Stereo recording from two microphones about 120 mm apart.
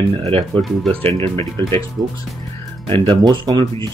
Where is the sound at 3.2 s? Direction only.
35° right (ahead or behind).